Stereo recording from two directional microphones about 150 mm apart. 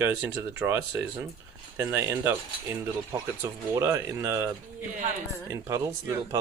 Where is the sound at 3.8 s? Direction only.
25° right (ahead or behind).